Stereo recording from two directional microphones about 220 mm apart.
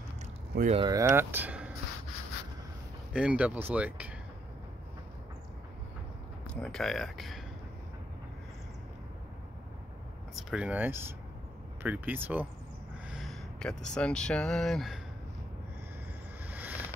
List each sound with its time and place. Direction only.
0.6 s speech: 30° right (ahead or behind)
0.8 s speech: 15° right (ahead or behind)
3.1 s speech: 5° right (ahead or behind)
6.5 s speech: 5° left (ahead or behind)
10.3 s speech: 5° right (ahead or behind)
16.4 s a sound: 10° right (ahead or behind)